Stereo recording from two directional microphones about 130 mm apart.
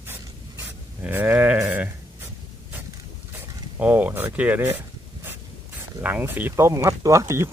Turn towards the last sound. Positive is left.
turn(degrees=-20)  # may be behind; listen again after turning